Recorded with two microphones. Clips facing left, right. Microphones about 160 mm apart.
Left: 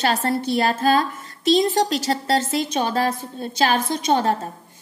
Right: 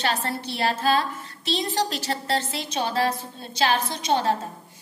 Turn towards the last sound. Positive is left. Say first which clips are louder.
# left 4 dB
turn(degrees=50)  # may be behind; listen again after turning